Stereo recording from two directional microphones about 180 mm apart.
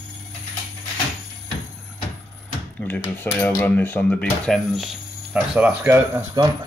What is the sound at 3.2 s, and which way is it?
Speech, 10° left (ahead or behind).